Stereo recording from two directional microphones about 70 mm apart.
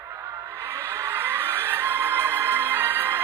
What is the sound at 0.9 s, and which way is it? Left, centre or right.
Music, right.